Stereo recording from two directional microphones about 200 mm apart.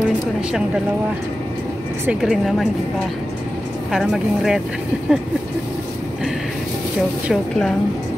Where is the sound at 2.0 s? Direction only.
5° right (ahead or behind).